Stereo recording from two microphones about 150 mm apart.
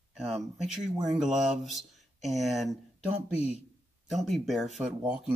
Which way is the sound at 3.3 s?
45° left (ahead or behind).